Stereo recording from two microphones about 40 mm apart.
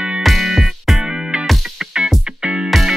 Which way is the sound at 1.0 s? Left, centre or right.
Right.